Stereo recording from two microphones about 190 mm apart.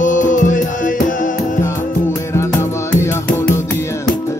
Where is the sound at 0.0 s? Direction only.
40° left (ahead or behind).